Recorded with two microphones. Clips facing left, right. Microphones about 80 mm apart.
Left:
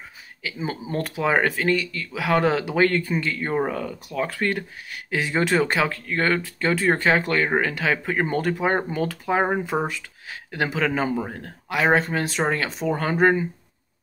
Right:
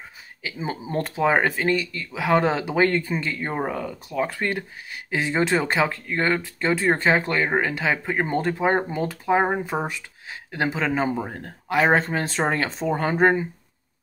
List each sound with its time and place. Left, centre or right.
0.4 s speech: right
11.3 s speech: right